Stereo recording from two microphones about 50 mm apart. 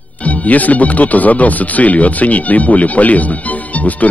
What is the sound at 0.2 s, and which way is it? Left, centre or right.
Speech, left.